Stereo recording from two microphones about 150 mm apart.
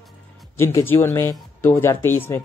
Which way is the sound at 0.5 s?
15° left (ahead or behind).